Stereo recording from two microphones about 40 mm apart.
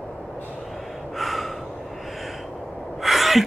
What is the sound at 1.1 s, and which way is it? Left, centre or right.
Gasp, centre.